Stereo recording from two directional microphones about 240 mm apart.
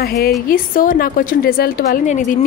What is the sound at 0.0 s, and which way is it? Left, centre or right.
A woman's voice, left.